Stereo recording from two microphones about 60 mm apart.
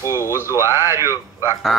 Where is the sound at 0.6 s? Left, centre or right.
Right.